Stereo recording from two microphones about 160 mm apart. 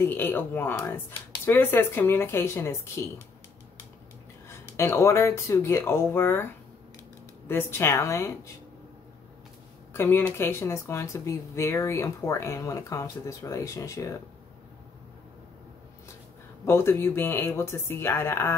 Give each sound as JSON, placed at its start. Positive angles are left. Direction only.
{"t": 0.0, "sound": "speech", "side_deg": 15}
{"t": 4.5, "sound": "speech", "side_deg": 15}
{"t": 9.9, "sound": "speech", "side_deg": 15}
{"t": 16.6, "sound": "speech", "side_deg": 15}